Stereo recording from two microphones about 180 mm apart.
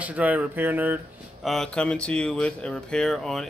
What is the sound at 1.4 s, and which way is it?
Speech, centre (ahead or behind).